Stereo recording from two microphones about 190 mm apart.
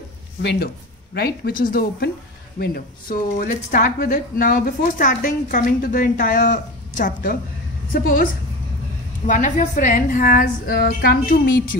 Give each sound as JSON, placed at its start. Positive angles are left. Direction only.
{"t": 0.4, "sound": "speech", "side_deg": 60}